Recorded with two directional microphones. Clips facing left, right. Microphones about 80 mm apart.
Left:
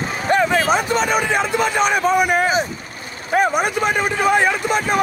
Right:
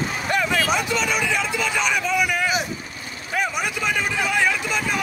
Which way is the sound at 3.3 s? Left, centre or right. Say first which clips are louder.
Left 8 dB; left.